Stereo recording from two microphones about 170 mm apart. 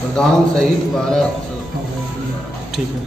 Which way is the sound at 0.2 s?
5° left (ahead or behind).